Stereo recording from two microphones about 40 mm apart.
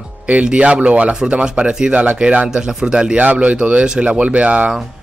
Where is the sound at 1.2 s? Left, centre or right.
Right.